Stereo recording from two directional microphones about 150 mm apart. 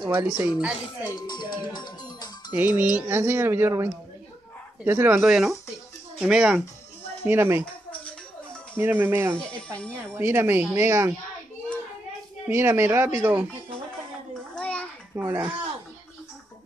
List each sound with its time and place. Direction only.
0.0 s speech: 15° right (ahead or behind)
1.2 s speech: 30° left (ahead or behind)
2.5 s speech: 10° right (ahead or behind)
8.7 s speech: 15° right (ahead or behind)
9.4 s speech: 10° left (ahead or behind)
10.1 s speech: 15° right (ahead or behind)
12.4 s speech: 15° right (ahead or behind)
14.5 s a sound: 10° left (ahead or behind)
15.1 s speech: 15° right (ahead or behind)